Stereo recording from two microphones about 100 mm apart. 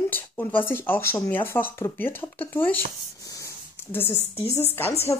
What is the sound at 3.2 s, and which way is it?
Rub, 35° left (ahead or behind).